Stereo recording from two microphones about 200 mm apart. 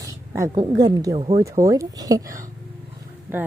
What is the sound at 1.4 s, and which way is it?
Speech, 15° right (ahead or behind).